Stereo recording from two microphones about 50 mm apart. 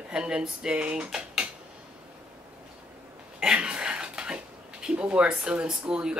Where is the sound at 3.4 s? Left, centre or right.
Right.